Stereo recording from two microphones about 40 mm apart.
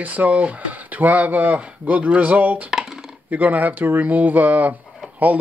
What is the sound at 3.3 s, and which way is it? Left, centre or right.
Speech, right.